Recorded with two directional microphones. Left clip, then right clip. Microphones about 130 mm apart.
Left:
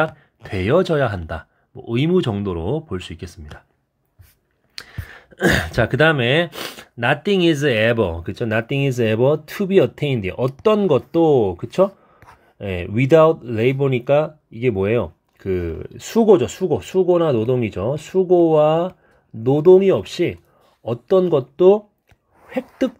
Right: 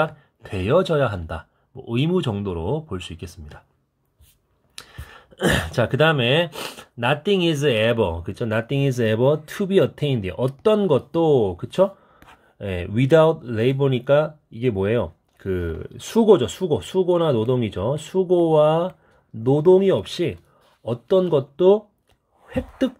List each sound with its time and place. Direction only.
0.0 s speech: 35° left (ahead or behind)
4.7 s speech: 30° left (ahead or behind); by 21.8 s 10° left (ahead or behind)